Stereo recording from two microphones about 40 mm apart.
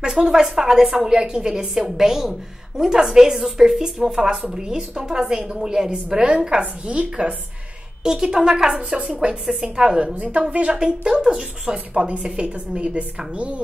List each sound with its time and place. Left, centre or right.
0.0 s a woman's voice: centre
6.6 s a woman's voice: right
8.0 s a woman's voice: centre
8.7 s a woman's voice: right
9.3 s a woman's voice: centre
10.1 s a woman's voice: right
10.7 s a woman's voice: right